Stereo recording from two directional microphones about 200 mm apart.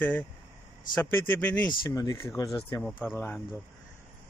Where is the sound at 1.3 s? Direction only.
5° left (ahead or behind).